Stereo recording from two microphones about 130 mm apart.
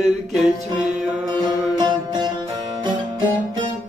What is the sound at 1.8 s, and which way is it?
Music, 35° right (ahead or behind).